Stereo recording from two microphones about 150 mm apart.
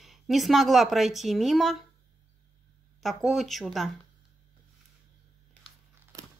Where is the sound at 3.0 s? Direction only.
Centre (ahead or behind).